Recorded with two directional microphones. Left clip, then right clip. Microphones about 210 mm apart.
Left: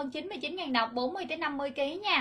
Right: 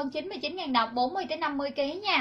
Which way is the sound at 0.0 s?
30° left (ahead or behind).